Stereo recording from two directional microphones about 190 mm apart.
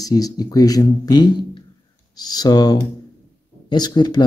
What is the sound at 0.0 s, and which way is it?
Speech, 20° left (ahead or behind).